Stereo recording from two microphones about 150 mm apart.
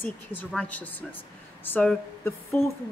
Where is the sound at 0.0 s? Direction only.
10° left (ahead or behind).